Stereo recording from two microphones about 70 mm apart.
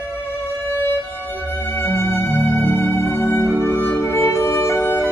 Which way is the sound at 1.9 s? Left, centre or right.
Left.